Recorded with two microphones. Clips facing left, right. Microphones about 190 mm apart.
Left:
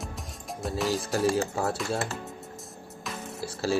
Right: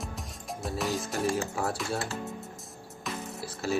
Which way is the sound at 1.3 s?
30° left (ahead or behind).